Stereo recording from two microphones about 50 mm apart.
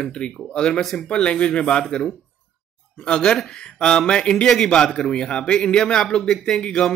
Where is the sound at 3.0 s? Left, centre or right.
Centre.